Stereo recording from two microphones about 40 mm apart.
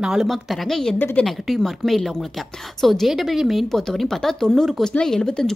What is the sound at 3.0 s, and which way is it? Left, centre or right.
Speech, centre.